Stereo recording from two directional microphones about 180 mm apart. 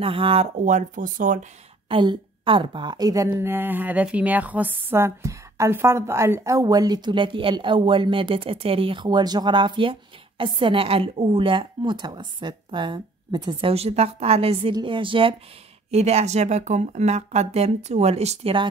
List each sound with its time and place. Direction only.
0.0 s speech: 30° right (ahead or behind); by 1.4 s 45° right (ahead or behind)
1.9 s a woman's voice: 30° right (ahead or behind)